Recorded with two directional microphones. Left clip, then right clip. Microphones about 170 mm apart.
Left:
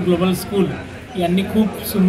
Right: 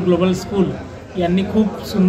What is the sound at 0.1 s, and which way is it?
Speech, 5° left (ahead or behind).